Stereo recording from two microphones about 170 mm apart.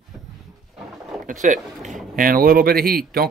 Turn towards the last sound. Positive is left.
turn(degrees=-60)  # may be behind; listen again after turning